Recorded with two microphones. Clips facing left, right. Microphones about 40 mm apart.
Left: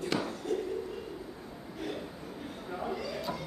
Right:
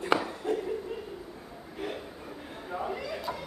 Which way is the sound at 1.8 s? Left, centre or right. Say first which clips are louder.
Right 1 dB; right.